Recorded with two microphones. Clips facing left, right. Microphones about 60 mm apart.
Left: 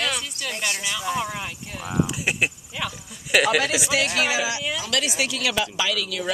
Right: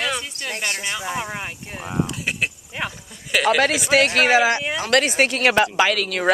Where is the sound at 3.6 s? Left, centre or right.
Right.